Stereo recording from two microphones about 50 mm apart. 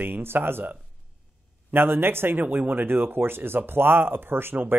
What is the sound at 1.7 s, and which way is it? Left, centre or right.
Speech, right.